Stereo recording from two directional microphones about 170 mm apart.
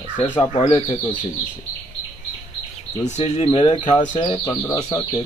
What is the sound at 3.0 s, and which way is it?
Speech, 40° left (ahead or behind).